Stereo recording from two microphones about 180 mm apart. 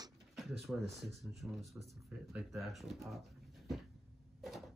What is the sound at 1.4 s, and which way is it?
Speech, 5° right (ahead or behind).